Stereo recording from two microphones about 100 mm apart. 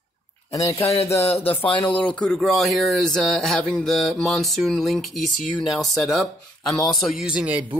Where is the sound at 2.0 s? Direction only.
10° left (ahead or behind).